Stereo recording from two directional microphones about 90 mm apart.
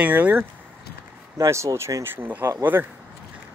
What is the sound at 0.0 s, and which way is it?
Speech, 15° right (ahead or behind).